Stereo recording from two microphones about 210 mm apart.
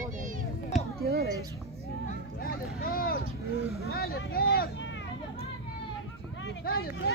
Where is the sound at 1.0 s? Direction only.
50° right (ahead or behind).